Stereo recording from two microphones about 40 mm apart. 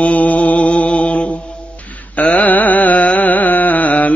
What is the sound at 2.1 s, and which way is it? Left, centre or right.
Music, left.